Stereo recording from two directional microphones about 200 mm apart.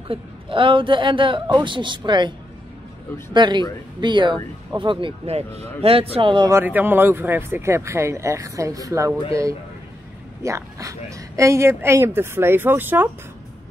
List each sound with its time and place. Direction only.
0.1 s a man's voice: 25° right (ahead or behind)
3.3 s a man's voice: 20° right (ahead or behind)
6.6 s a woman's voice: 10° right (ahead or behind)
10.4 s a woman's voice: 15° right (ahead or behind)